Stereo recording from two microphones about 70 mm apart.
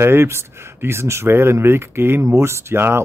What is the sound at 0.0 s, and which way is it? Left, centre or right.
Speech, right.